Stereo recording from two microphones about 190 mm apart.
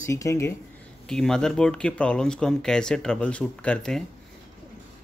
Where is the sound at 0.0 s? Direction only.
15° left (ahead or behind).